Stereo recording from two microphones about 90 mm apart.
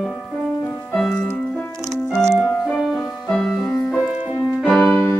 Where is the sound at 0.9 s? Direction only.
10° left (ahead or behind).